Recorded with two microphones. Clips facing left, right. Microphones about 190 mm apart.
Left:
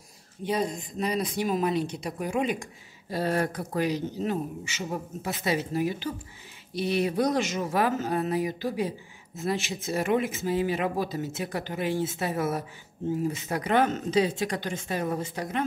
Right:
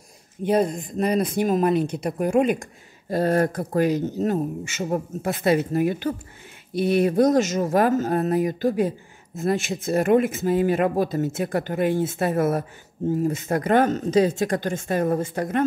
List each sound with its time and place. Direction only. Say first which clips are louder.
0.5 s speech: right 7 dB; 55° right (ahead or behind)